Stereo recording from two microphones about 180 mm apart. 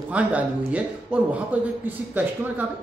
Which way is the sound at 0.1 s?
5° right (ahead or behind).